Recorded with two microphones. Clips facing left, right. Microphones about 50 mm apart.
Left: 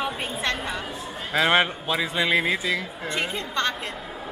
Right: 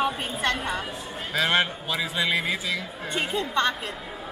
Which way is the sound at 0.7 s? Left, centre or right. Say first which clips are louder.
Even; centre.